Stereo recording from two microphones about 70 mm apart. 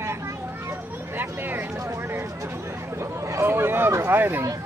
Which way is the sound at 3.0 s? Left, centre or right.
Right.